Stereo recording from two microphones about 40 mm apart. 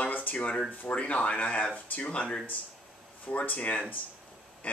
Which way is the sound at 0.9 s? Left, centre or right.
Left.